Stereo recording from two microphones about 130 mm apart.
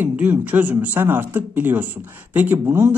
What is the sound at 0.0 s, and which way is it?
Speech, 15° right (ahead or behind).